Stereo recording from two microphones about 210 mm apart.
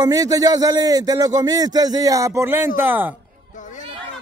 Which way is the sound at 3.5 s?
35° left (ahead or behind).